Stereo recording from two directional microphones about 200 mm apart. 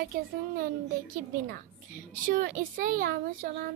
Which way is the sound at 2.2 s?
45° right (ahead or behind).